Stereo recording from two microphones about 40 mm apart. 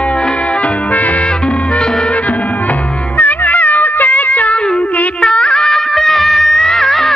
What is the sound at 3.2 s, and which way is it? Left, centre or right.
Music, left.